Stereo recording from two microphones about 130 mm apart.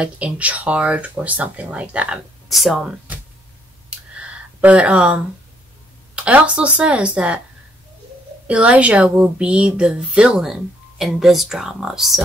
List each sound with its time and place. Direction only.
0.0 s a woman's voice: 10° right (ahead or behind)
4.1 s a sound: 10° right (ahead or behind)
6.1 s a woman's voice: 10° right (ahead or behind)
8.5 s a woman's voice: 10° right (ahead or behind)